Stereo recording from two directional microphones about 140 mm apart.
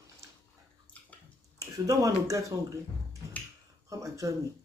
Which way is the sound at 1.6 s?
25° right (ahead or behind).